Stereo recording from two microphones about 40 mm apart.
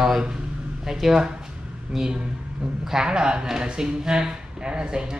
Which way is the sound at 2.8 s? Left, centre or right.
Centre.